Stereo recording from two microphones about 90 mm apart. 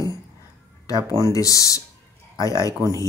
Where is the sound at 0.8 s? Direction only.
40° left (ahead or behind).